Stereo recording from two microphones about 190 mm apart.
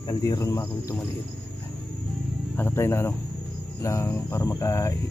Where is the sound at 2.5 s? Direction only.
10° left (ahead or behind).